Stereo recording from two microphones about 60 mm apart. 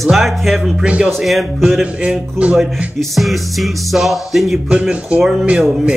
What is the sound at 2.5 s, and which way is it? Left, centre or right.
Speech, centre.